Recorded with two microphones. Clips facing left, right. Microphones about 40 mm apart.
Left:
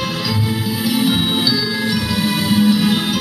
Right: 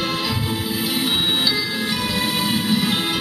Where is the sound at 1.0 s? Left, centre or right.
Centre.